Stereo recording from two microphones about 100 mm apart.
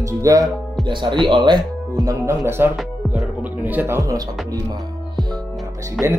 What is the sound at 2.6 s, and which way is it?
Speech, 20° right (ahead or behind).